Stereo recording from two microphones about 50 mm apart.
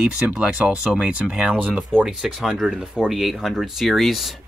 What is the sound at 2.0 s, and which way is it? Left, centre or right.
Speech, centre.